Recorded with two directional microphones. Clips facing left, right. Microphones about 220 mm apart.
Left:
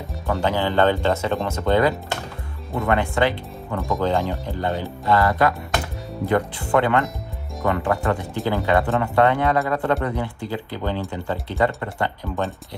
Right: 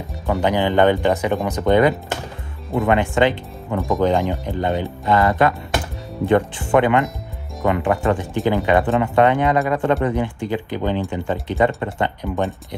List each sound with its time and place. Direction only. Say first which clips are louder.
0.4 s speech: right 3 dB; 15° right (ahead or behind)
3.7 s speech: right 4 dB; centre (ahead or behind)
4.0 s speech: right 4 dB; 20° right (ahead or behind)